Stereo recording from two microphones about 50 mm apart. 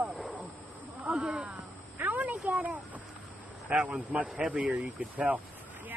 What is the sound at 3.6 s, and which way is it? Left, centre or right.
Speech, right.